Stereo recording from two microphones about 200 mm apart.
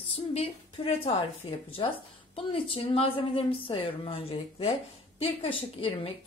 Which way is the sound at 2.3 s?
25° left (ahead or behind).